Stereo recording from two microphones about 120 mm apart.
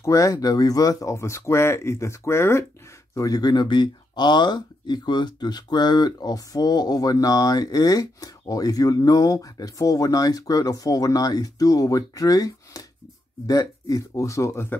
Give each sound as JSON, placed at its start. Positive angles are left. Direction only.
{"t": 0.0, "sound": "speech", "side_deg": 25}
{"t": 3.2, "sound": "speech", "side_deg": 30}